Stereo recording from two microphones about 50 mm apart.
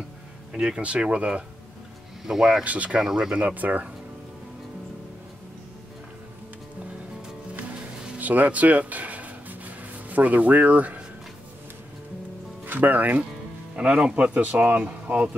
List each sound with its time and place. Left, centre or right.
0.5 s speech: centre
2.2 s speech: centre
2.6 s speech: right
3.0 s speech: centre
3.3 s speech: right
8.2 s a sound: right
12.6 s speech: right
13.7 s speech: centre